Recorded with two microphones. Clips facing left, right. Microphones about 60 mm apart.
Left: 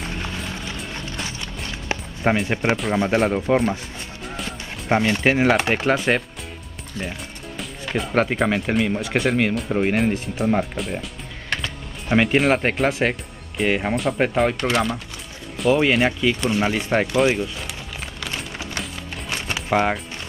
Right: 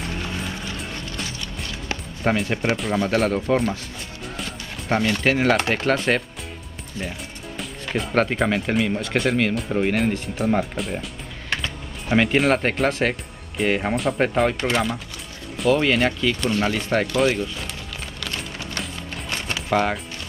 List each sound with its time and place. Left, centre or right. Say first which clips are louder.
1.2 s music: left 1 dB; left
2.7 s speech: left 2 dB; centre
3.5 s speech: left 2 dB; centre
4.2 s music: left 1 dB; centre
4.9 s speech: left 2 dB; centre
7.5 s speech: left 1 dB; centre
11.6 s music: even; centre
12.7 s speech: left 1 dB; centre
15.5 s music: left 1 dB; centre
15.8 s speech: left 2 dB; centre
18.2 s music: left 1 dB; centre